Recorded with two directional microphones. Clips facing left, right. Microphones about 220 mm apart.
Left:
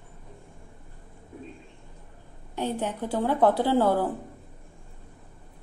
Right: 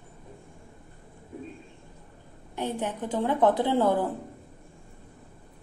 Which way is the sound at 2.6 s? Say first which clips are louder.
Left 1 dB; 10° left (ahead or behind).